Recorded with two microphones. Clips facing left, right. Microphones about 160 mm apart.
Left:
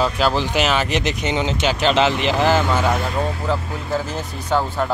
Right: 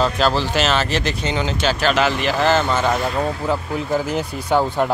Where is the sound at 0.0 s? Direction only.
15° left (ahead or behind).